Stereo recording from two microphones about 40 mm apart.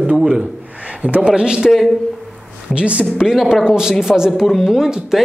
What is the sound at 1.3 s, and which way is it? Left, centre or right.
Speech, centre.